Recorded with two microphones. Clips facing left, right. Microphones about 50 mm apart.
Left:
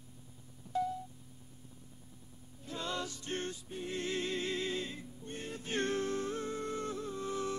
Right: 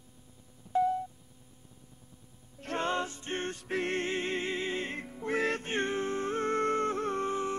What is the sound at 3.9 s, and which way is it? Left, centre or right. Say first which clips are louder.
Music: right 4 dB; right.